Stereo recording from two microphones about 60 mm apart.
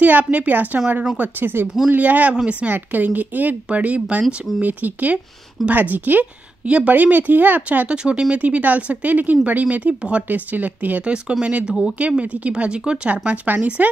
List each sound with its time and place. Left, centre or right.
0.0 s a woman's voice: right
1.4 s a woman's voice: right; by 2.7 s centre
2.7 s a woman's voice: right
4.2 s speech: centre
4.6 s a woman's voice: right